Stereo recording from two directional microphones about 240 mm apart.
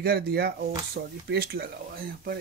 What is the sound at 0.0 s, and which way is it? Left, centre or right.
Speech, right.